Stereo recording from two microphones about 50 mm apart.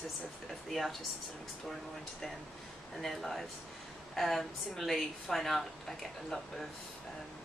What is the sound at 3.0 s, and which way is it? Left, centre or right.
A woman's voice, centre.